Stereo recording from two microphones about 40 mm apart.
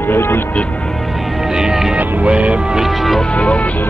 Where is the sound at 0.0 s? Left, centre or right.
Left.